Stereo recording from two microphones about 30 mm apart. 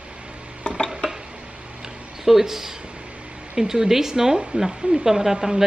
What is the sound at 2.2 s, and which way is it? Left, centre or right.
A woman's voice, centre.